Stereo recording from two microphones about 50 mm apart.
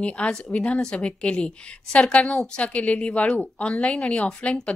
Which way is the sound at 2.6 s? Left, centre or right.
Left.